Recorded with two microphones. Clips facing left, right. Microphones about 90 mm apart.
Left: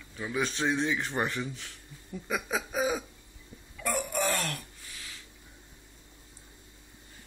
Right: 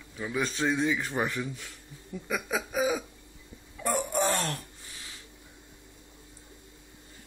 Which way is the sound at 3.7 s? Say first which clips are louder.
Right 3 dB; 30° right (ahead or behind).